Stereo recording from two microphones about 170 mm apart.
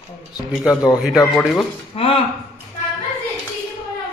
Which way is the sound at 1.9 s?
35° left (ahead or behind).